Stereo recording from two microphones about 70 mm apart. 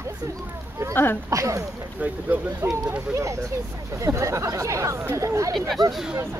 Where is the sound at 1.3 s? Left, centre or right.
Right.